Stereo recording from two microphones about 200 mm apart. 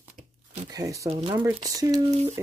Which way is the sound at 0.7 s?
15° right (ahead or behind).